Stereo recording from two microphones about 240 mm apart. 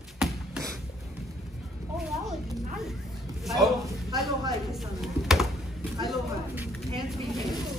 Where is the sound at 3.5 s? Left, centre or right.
Centre.